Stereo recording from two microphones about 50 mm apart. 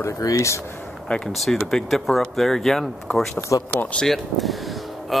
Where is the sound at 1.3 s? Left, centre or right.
Centre.